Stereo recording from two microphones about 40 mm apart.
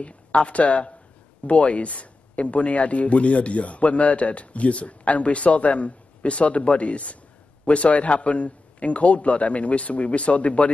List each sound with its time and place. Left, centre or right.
0.0 s speech: left